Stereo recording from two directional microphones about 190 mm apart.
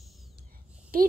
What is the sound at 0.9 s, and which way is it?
Speech, 50° right (ahead or behind).